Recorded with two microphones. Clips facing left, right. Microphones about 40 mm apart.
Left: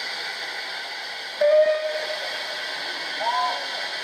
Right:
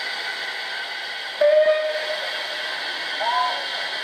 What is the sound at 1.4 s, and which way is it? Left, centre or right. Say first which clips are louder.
Steam whistle: right 2 dB; right.